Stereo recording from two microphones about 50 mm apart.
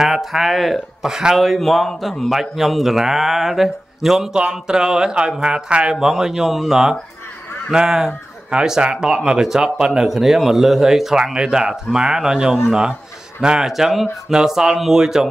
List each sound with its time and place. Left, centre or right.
0.0 s speech: centre
5.9 s speech: centre